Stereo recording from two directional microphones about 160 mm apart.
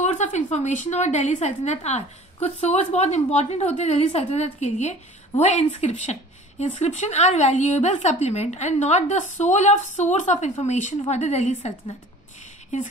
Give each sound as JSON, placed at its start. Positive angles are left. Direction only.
{"t": 0.0, "sound": "a woman's voice", "side_deg": 50}